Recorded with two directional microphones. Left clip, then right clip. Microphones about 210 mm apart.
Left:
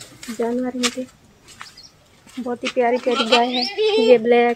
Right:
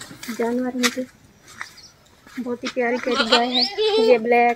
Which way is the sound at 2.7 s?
20° left (ahead or behind).